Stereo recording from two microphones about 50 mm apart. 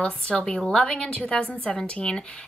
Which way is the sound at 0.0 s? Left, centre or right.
Left.